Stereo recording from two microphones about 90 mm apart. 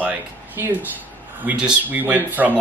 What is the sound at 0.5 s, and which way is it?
A man's voice, 20° right (ahead or behind).